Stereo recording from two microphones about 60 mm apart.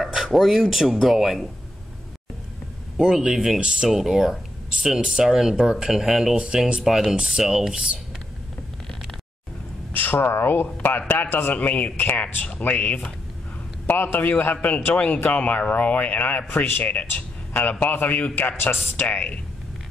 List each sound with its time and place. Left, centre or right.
0.0 s speech: centre
3.0 s speech: centre
9.9 s a man's voice: left
11.5 s a man's voice: left
13.8 s a man's voice: left
16.4 s a man's voice: left
16.8 s a man's voice: left
19.0 s a man's voice: left